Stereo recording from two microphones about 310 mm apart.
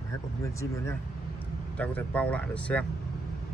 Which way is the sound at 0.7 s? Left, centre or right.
Centre.